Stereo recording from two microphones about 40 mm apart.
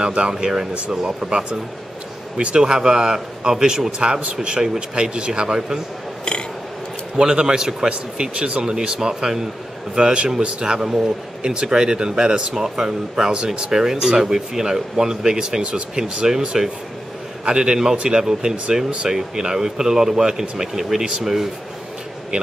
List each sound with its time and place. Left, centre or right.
0.0 s speech: right
2.6 s speech: centre
7.2 s speech: centre
7.9 s speech: right; by 21.5 s centre